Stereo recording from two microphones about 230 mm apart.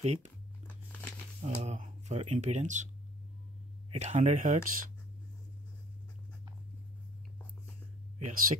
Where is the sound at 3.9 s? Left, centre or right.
Right.